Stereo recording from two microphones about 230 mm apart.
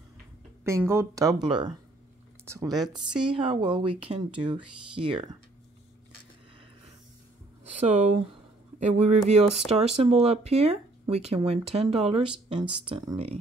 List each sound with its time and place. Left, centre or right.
0.7 s speech: centre
3.1 s speech: right
3.3 s speech: right
7.7 s a sound: right
9.7 s speech: right